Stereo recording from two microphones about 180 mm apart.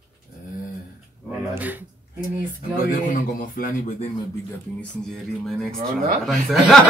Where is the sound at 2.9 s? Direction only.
50° left (ahead or behind).